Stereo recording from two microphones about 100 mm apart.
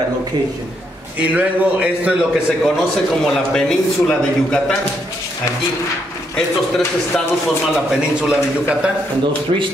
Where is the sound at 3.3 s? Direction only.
5° left (ahead or behind).